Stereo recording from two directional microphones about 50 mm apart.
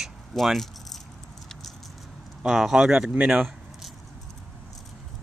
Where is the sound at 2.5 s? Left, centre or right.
Centre.